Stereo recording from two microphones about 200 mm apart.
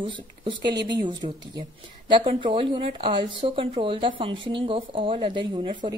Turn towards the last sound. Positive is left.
turn(degrees=-25)  # may be behind; listen again after turning